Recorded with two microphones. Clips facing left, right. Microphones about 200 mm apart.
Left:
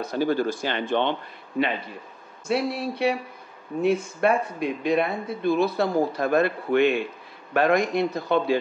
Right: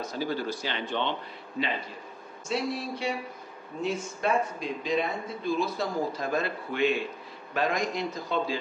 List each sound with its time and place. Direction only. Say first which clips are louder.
0.0 s speech: left 7 dB; 60° left (ahead or behind)
2.4 s speech: left 5 dB; 60° left (ahead or behind)